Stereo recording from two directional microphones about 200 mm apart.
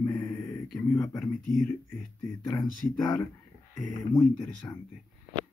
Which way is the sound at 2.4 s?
20° left (ahead or behind).